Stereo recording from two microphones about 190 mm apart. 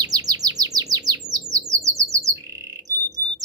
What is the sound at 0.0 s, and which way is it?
Chirp, 20° right (ahead or behind).